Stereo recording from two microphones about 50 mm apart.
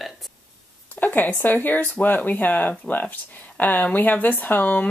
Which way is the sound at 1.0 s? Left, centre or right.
Left.